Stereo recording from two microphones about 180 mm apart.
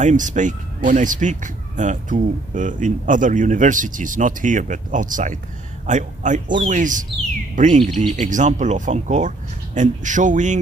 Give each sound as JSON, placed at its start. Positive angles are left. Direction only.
{"t": 0.0, "sound": "speech", "side_deg": -45}
{"t": 7.8, "sound": "speech", "side_deg": 0}
{"t": 8.2, "sound": "speech", "side_deg": -45}